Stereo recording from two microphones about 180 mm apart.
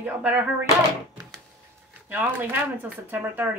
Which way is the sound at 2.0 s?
10° right (ahead or behind).